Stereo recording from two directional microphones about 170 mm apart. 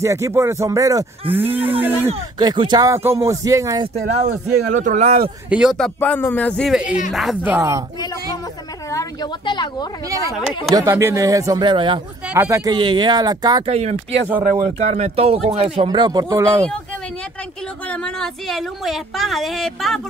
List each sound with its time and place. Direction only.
0.0 s speech: 15° right (ahead or behind)
2.0 s speech: 25° right (ahead or behind)
3.8 s speech: 40° right (ahead or behind)
5.5 s a woman's voice: 5° right (ahead or behind)
5.9 s speech: 10° left (ahead or behind)
6.7 s a woman's voice: 5° right (ahead or behind)
7.5 s speech: 15° right (ahead or behind)
8.9 s a woman's voice: 25° left (ahead or behind)
10.0 s speech: 20° right (ahead or behind)
12.3 s speech: 15° right (ahead or behind)
12.7 s speech: 25° right (ahead or behind)
13.7 s speech: 40° right (ahead or behind); by 16.6 s 20° right (ahead or behind)
17.8 s a woman's voice: 5° left (ahead or behind)